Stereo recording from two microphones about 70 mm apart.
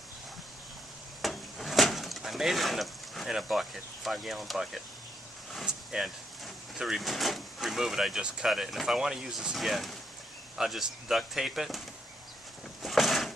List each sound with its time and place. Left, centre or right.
1.2 s bird: centre
5.7 s speech: centre
12.8 s a sound: centre